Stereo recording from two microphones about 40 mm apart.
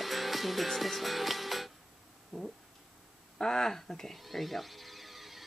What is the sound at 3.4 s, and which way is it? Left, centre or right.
Speech, centre.